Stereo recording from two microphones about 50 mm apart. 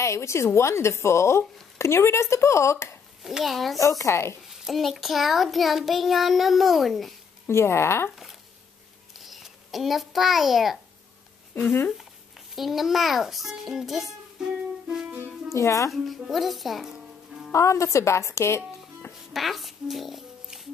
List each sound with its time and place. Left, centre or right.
0.0 s speech: left
3.2 s a child's voice: centre
4.0 s speech: left
4.5 s a child's voice: centre
7.4 s speech: left
9.2 s a child's voice: centre
12.5 s a child's voice: centre
15.5 s speech: left
15.9 s a child's voice: centre
17.5 s speech: left
19.3 s a child's voice: centre